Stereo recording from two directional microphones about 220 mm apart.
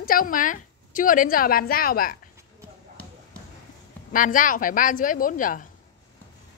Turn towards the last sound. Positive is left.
turn(degrees=35)  # may be behind; listen again after turning